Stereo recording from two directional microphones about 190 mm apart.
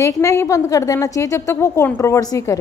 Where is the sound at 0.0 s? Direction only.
15° left (ahead or behind).